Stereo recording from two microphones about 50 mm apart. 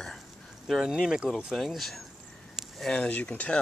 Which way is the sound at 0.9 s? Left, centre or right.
Centre.